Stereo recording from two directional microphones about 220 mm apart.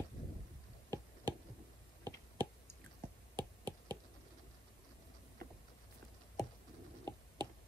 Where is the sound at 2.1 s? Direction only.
20° right (ahead or behind).